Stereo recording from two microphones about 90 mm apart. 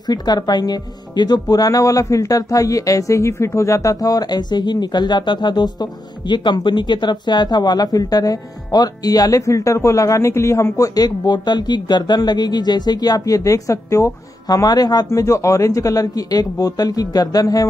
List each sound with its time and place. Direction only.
0.0 s speech: 50° left (ahead or behind)